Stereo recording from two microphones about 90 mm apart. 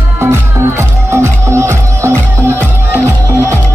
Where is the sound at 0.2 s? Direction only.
30° right (ahead or behind).